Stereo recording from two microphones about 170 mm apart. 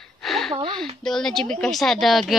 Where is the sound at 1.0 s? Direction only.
Centre (ahead or behind).